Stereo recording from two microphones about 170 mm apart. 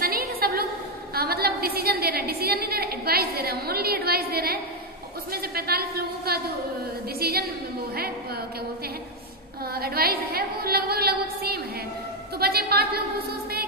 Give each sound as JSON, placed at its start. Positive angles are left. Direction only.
{"t": 0.0, "sound": "a sound", "side_deg": -60}
{"t": 1.1, "sound": "a woman's voice", "side_deg": -65}
{"t": 9.7, "sound": "a woman's voice", "side_deg": -65}